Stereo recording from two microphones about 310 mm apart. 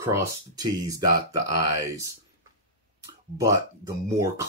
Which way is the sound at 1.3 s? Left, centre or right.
Right.